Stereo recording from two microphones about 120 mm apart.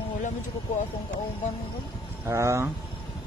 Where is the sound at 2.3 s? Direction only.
25° right (ahead or behind).